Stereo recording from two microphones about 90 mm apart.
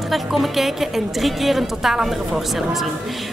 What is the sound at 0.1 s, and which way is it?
A woman's voice, centre (ahead or behind).